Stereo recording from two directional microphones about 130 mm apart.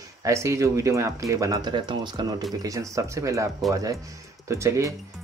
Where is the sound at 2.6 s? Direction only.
25° right (ahead or behind).